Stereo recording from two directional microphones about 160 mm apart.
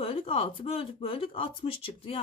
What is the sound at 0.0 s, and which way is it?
A woman's voice, 35° left (ahead or behind).